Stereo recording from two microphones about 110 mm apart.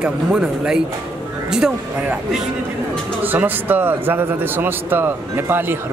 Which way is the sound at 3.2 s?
15° right (ahead or behind).